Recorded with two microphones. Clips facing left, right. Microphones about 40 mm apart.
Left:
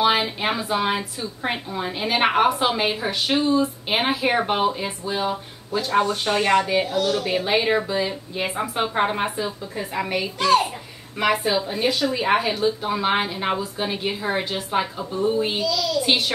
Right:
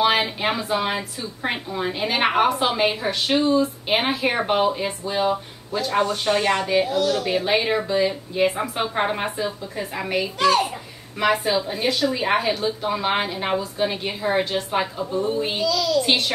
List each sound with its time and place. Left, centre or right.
0.0 s a woman's voice: centre
7.0 s speech: left
7.2 s a woman's voice: centre